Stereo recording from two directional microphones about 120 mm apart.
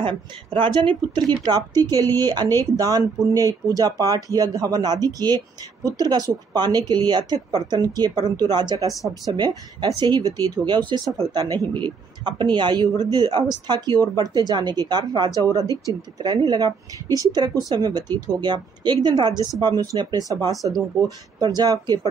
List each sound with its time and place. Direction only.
0.7 s speech: 40° right (ahead or behind)
21.5 s speech: 35° right (ahead or behind)